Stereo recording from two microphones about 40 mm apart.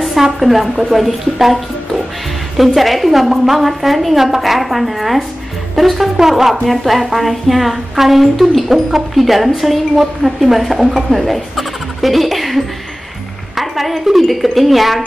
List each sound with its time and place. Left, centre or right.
0.0 s speech: centre
5.8 s music: centre
6.1 s speech: centre